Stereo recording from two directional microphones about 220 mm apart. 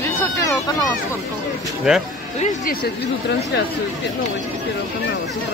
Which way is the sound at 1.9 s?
5° right (ahead or behind).